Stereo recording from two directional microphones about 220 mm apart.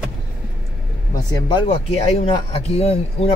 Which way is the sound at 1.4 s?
25° left (ahead or behind).